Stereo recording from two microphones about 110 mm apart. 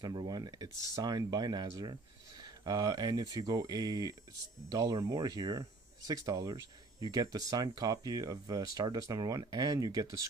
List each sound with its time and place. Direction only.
0.0 s speech: 40° right (ahead or behind)